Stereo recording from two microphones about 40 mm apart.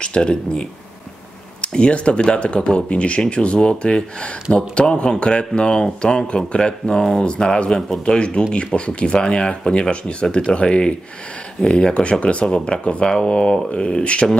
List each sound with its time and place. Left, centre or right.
0.0 s speech: left